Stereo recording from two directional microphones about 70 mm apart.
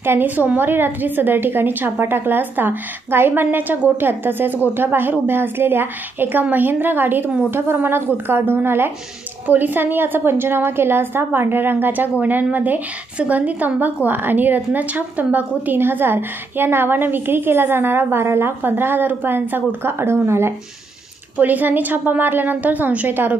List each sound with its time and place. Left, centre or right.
0.0 s a woman's voice: right
21.4 s a woman's voice: right